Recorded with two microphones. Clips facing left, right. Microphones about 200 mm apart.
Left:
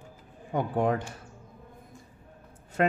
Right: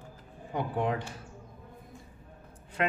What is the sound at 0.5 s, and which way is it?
Speech, 45° left (ahead or behind).